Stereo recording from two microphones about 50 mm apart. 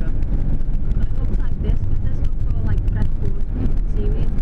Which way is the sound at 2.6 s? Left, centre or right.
Centre.